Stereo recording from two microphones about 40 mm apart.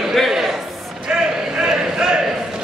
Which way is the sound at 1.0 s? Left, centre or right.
Centre.